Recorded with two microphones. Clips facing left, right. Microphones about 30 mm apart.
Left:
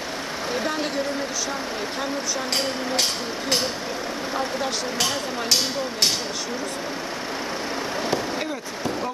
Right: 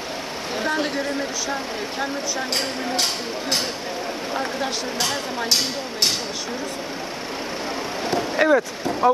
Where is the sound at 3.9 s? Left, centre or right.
Centre.